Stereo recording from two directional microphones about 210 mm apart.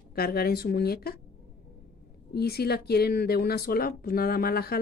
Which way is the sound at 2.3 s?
50° left (ahead or behind).